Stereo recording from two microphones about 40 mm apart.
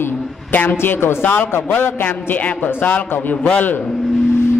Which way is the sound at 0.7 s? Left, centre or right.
Left.